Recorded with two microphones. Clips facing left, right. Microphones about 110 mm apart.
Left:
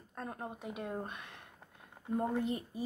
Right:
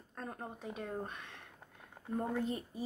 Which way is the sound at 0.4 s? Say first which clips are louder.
Left 2 dB; 10° left (ahead or behind).